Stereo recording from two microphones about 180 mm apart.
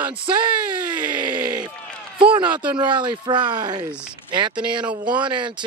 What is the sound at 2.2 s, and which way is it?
Speech, 25° right (ahead or behind).